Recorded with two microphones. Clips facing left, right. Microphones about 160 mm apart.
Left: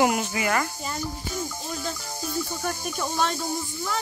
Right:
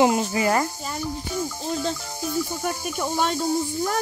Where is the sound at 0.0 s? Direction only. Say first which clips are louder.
Right 4 dB; 30° right (ahead or behind).